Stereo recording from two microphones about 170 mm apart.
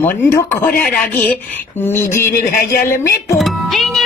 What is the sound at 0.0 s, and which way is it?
Speech, 10° left (ahead or behind).